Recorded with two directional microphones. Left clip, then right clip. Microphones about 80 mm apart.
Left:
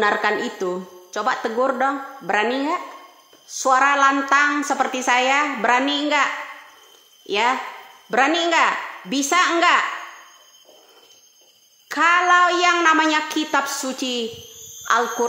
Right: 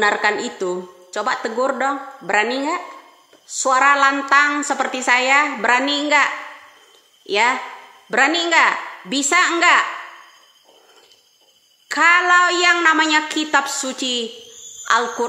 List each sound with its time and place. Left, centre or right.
0.0 s a woman's voice: centre
11.9 s speech: centre
12.2 s a woman's voice: centre